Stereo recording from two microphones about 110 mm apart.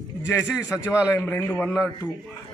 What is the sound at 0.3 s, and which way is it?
A man's voice, 30° left (ahead or behind).